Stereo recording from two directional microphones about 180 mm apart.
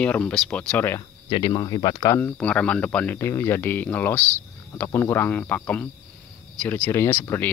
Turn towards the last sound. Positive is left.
turn(degrees=10)  # may be behind; listen again after turning